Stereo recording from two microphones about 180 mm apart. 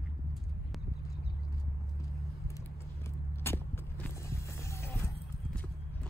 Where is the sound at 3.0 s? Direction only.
15° left (ahead or behind).